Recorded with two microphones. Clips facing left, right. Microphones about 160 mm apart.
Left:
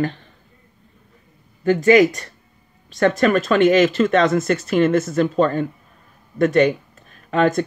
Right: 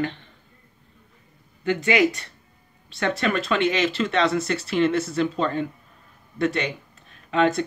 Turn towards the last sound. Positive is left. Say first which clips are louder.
# left 3 dB
turn(degrees=45)  # may be behind; listen again after turning